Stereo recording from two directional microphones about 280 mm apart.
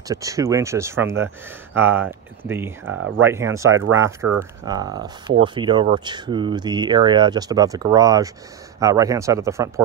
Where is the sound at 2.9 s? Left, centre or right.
Right.